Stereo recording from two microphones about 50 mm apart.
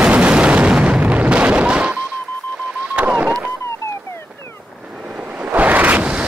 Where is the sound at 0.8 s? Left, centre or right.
Right.